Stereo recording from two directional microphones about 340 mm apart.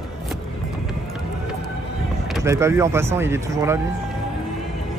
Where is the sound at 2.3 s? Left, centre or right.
Centre.